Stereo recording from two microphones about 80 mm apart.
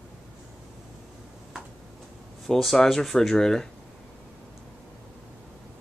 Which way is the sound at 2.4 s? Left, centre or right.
Centre.